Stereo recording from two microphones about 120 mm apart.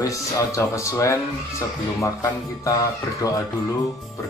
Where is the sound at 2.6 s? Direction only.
25° left (ahead or behind).